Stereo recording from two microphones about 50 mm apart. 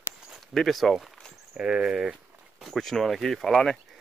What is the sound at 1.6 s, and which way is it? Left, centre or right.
Speech, centre.